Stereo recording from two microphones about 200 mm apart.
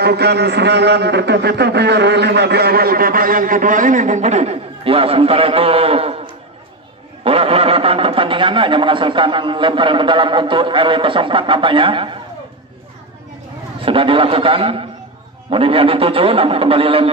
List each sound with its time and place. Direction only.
0.0 s a man's voice: 55° right (ahead or behind); by 12.2 s 25° right (ahead or behind)
13.8 s speech: 25° right (ahead or behind)